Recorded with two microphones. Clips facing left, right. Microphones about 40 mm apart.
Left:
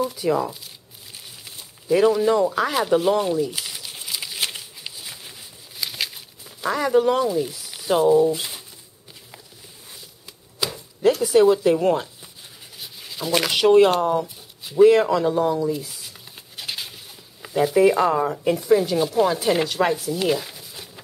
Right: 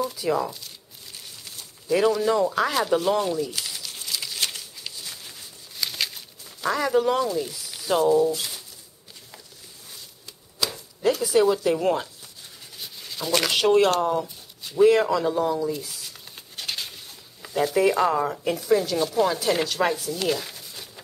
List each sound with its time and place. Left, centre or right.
0.0 s speech: centre
1.1 s a sound: centre
8.2 s speech: left
10.6 s chopping: centre
12.7 s a sound: centre
17.4 s speech: centre